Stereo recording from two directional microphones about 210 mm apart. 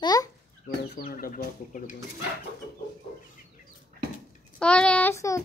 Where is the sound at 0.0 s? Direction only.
20° left (ahead or behind).